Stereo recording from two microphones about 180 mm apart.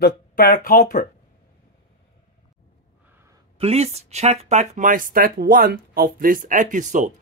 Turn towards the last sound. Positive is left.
turn(degrees=-45)  # may be behind; listen again after turning